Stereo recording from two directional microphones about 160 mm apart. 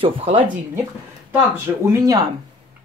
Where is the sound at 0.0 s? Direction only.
35° right (ahead or behind).